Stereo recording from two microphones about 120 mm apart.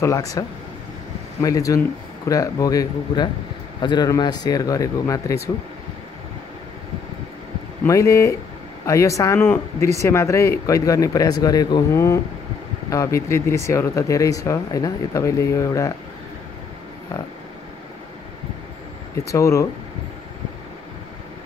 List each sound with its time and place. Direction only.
0.0 s speech: 25° left (ahead or behind)
7.8 s speech: 25° left (ahead or behind)
19.1 s speech: 25° left (ahead or behind)